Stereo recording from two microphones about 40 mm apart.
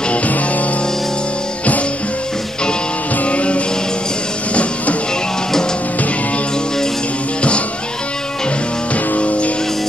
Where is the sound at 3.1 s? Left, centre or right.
Left.